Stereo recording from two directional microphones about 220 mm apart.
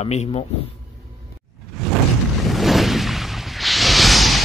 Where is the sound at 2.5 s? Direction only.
Centre (ahead or behind).